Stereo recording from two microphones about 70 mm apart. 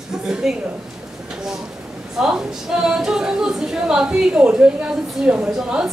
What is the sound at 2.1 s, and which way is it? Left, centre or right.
Speech, centre.